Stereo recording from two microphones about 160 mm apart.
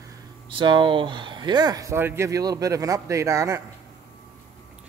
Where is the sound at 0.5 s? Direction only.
30° right (ahead or behind).